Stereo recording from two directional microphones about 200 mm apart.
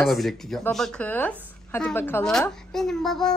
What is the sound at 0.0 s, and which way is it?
Speech, centre (ahead or behind).